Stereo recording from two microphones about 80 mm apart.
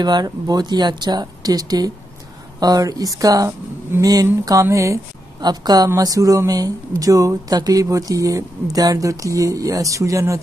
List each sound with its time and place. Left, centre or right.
0.0 s speech: right
5.4 s speech: right